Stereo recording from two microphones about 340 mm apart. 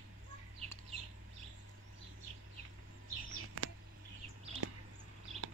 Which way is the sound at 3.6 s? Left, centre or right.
Right.